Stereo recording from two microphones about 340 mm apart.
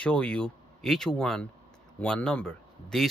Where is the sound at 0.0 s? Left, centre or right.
Centre.